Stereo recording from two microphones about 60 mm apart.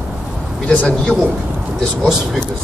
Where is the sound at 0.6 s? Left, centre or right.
Left.